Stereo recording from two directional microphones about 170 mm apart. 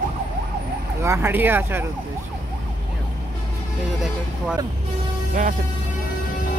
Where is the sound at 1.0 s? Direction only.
15° right (ahead or behind).